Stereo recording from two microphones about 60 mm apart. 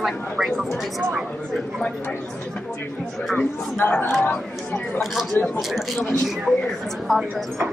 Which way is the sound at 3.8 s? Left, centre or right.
Left.